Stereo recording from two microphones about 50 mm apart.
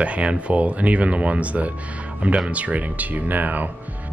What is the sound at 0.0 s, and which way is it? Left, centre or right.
Speech, right.